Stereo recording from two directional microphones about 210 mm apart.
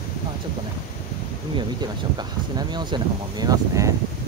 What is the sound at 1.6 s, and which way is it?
Speech, 20° right (ahead or behind).